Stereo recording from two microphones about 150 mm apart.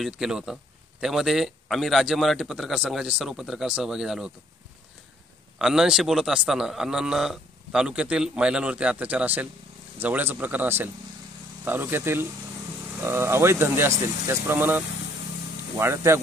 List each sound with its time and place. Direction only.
0.0 s a man's voice: 5° right (ahead or behind)
5.6 s a man's voice: 5° right (ahead or behind)
15.8 s speech: 20° right (ahead or behind)